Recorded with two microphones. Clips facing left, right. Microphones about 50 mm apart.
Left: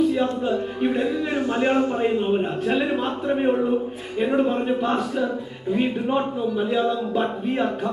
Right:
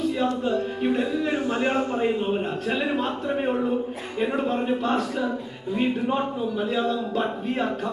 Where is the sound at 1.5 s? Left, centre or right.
Centre.